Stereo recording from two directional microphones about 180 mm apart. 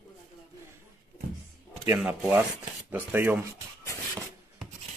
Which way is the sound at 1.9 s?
5° right (ahead or behind).